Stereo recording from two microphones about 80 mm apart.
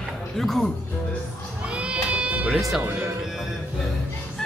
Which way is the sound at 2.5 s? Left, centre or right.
Centre.